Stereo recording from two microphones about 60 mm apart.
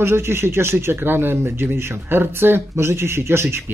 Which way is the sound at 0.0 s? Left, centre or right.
Right.